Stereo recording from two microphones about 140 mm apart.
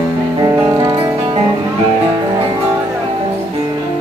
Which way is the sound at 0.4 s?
25° right (ahead or behind).